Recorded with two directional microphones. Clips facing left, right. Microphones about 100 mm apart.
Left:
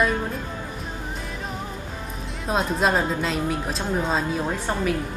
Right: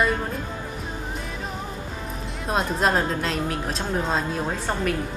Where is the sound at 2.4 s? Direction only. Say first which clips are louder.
Left 1 dB; centre (ahead or behind).